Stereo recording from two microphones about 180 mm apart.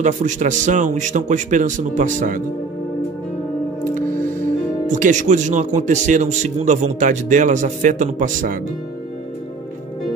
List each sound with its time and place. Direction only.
0.0 s speech: 45° right (ahead or behind)
4.8 s speech: 45° right (ahead or behind)